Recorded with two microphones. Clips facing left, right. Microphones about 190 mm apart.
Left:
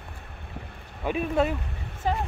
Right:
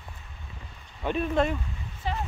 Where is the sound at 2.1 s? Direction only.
45° left (ahead or behind).